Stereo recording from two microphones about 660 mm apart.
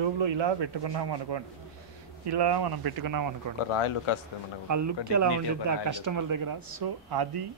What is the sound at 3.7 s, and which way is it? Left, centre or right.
Speech, left.